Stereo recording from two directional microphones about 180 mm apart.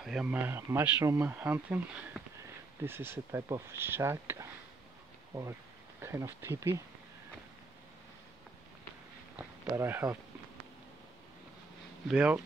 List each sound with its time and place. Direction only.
0.0 s speech: 5° right (ahead or behind)
9.4 s speech: 10° right (ahead or behind)
12.1 s speech: 5° right (ahead or behind)